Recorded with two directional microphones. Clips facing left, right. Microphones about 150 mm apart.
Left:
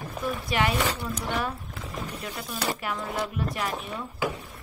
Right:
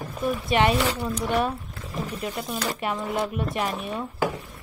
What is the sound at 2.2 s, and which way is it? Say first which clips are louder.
A woman's voice: right 5 dB; 25° right (ahead or behind).